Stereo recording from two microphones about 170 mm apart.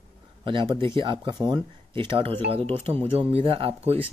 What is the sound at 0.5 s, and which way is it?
Speech, 30° right (ahead or behind).